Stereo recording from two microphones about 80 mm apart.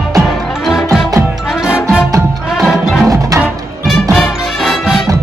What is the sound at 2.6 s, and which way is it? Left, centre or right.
Music, centre.